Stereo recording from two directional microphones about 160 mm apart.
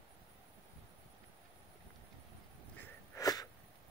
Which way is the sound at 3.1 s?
25° left (ahead or behind).